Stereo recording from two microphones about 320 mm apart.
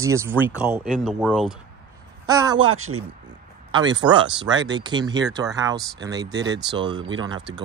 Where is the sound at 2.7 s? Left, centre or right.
Right.